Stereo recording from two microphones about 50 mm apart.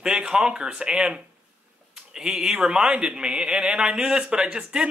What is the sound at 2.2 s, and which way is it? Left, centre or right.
Speech, centre.